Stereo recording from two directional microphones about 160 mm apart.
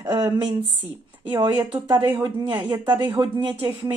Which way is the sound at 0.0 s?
25° right (ahead or behind).